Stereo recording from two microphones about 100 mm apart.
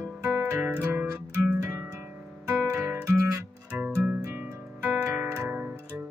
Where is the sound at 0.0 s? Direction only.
20° right (ahead or behind).